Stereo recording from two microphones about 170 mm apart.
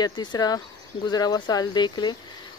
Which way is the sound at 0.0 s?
25° left (ahead or behind).